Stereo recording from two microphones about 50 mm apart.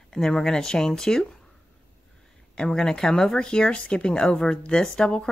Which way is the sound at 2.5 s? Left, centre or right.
Centre.